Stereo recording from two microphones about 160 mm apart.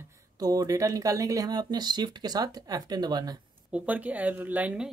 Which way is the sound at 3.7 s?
10° right (ahead or behind).